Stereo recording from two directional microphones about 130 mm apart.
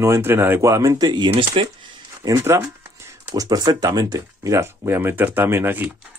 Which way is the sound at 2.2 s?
25° right (ahead or behind).